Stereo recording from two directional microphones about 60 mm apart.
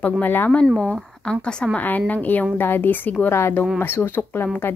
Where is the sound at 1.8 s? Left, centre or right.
Left.